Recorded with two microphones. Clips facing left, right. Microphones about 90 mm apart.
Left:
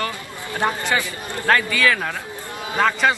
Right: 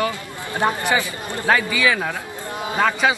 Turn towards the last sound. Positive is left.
turn(degrees=-5)  # may be behind; listen again after turning